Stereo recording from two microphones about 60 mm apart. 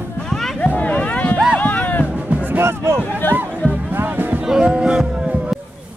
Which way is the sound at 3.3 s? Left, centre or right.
Right.